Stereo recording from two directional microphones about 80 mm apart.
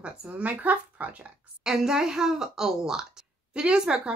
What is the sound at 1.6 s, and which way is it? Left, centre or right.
Speech, centre.